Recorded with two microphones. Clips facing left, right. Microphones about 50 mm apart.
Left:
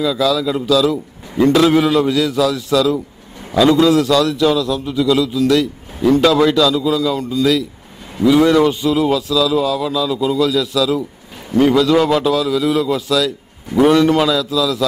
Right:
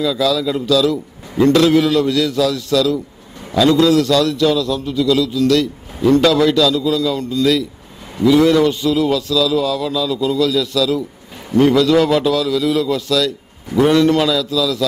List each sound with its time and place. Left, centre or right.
0.0 s a man's voice: centre